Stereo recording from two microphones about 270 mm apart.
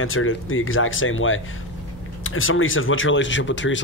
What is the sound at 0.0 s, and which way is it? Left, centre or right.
Speech, left.